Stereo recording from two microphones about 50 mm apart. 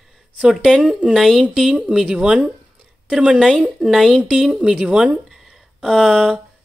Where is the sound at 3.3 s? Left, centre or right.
Centre.